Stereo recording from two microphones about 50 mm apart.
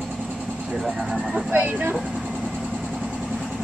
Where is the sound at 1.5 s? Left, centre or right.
Right.